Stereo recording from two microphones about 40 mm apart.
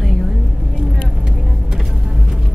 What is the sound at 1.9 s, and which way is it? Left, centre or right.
Music, centre.